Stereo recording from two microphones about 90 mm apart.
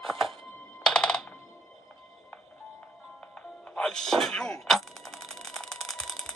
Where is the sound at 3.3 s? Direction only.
10° left (ahead or behind).